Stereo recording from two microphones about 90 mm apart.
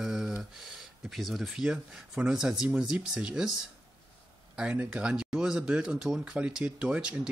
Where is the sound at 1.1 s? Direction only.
Centre (ahead or behind).